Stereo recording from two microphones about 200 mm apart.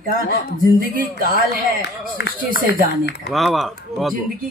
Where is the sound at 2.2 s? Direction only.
55° left (ahead or behind).